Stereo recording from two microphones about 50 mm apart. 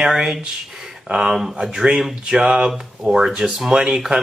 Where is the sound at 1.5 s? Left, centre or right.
Centre.